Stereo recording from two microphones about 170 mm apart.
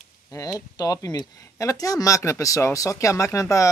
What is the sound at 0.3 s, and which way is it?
Speech, 20° left (ahead or behind).